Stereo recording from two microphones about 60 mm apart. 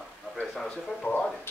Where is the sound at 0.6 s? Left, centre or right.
Left.